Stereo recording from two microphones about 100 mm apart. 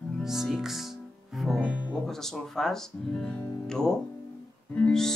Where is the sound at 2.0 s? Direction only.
5° left (ahead or behind).